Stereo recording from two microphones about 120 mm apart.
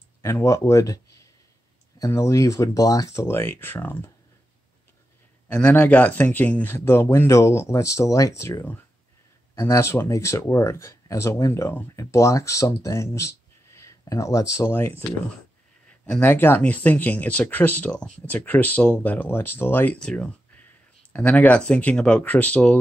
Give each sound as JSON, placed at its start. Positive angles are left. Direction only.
{"t": 0.2, "sound": "speech", "side_deg": 25}
{"t": 5.5, "sound": "speech", "side_deg": 15}
{"t": 16.1, "sound": "speech", "side_deg": 15}